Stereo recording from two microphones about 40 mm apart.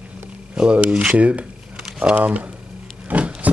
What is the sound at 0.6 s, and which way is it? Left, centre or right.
Speech, right.